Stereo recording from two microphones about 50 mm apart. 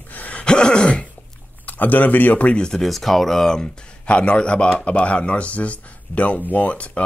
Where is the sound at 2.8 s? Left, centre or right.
Centre.